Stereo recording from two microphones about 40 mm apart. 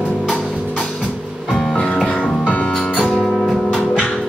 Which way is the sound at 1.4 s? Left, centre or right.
Centre.